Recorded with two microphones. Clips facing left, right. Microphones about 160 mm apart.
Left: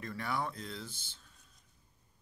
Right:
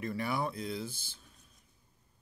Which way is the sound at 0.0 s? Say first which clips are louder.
Right 3 dB; 10° right (ahead or behind).